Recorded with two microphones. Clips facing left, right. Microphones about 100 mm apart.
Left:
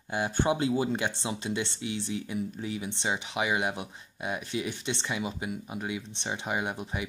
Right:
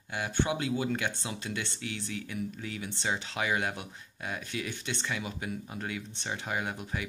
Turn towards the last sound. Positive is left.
turn(degrees=20)  # may be behind; listen again after turning